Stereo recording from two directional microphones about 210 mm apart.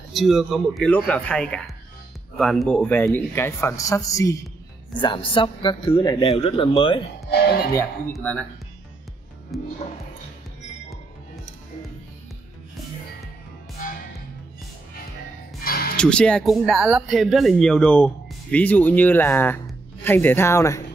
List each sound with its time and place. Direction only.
0.1 s a man's voice: centre (ahead or behind); by 7.0 s 25° left (ahead or behind)
7.2 s speech: 50° left (ahead or behind)
7.7 s a man's voice: 10° left (ahead or behind)
9.5 s speech: centre (ahead or behind)
15.6 s music: 45° left (ahead or behind)
16.0 s speech: 5° left (ahead or behind)